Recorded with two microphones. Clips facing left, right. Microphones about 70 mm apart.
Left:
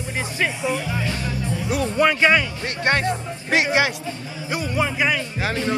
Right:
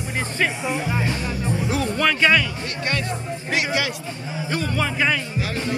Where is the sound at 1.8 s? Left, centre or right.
Centre.